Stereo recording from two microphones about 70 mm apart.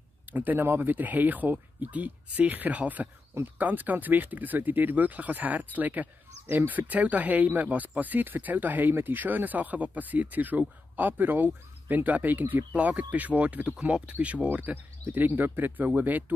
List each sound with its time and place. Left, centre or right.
0.3 s speech: right